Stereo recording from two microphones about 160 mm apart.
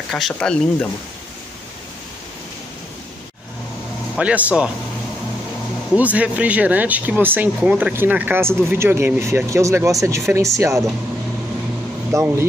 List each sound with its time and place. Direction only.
0.1 s speech: 5° left (ahead or behind)
4.2 s speech: 10° right (ahead or behind)
5.9 s speech: 10° right (ahead or behind)
12.1 s speech: 15° right (ahead or behind)